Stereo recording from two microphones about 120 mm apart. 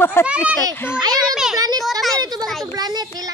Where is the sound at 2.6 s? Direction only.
35° right (ahead or behind).